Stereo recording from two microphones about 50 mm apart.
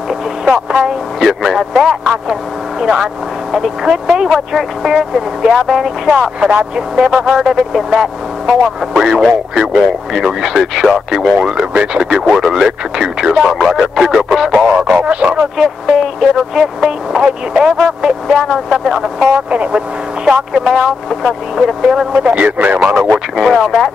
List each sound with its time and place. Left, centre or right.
0.1 s speech: centre
11.2 s speech: centre
15.0 s a man's voice: right
15.2 s speech: centre
16.5 s a sound: centre
17.2 s speech: centre
19.5 s a man's voice: right
20.2 s speech: centre
20.7 s speech: centre
22.2 s a man's voice: right
23.3 s speech: centre